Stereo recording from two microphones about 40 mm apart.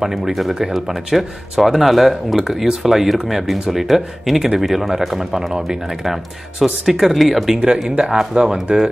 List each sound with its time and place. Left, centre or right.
0.0 s speech: centre
6.6 s speech: centre
7.9 s speech: centre